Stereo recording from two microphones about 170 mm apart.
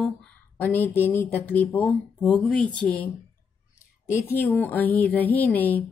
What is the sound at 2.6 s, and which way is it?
Speech, 30° right (ahead or behind).